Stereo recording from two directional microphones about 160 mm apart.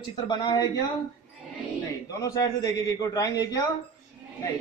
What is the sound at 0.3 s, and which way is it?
Speech, 30° left (ahead or behind).